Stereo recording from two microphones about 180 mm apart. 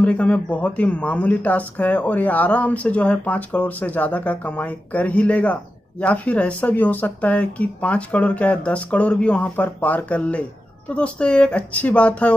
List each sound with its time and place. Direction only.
0.0 s speech: 5° left (ahead or behind)